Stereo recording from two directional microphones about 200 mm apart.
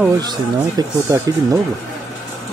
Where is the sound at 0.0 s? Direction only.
20° right (ahead or behind).